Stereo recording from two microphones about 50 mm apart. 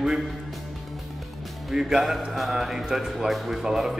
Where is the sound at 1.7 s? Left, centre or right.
Centre.